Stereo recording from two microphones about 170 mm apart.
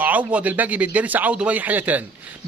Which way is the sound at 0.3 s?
10° right (ahead or behind).